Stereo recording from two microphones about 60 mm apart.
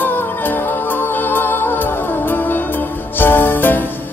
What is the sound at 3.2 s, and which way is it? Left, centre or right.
Music, left.